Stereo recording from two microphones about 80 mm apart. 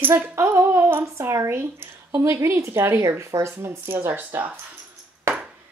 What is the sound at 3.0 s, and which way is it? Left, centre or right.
Speech, right.